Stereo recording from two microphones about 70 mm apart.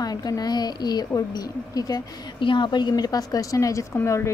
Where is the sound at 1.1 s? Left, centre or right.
Left.